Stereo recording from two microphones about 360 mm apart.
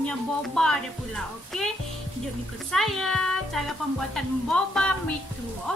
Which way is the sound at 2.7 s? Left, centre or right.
Centre.